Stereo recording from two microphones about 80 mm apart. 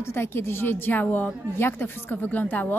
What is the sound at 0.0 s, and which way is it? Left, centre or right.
A woman's voice, left.